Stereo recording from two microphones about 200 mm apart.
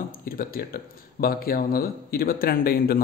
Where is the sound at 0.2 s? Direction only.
45° left (ahead or behind).